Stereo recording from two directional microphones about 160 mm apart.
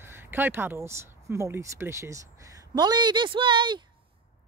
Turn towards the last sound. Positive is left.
turn(degrees=-30)  # may be behind; listen again after turning